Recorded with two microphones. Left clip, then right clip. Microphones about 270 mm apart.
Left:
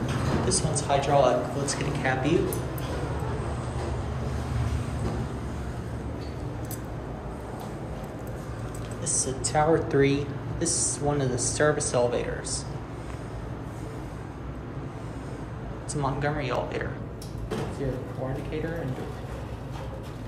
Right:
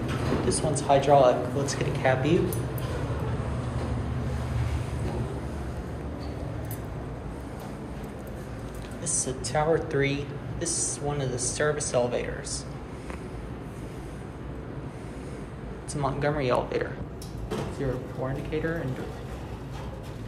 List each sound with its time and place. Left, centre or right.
0.5 s speech: centre
9.0 s a woman's voice: centre
15.9 s a woman's voice: centre